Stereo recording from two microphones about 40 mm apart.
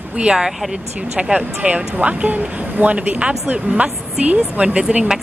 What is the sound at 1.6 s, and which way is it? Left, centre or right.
Speech, right.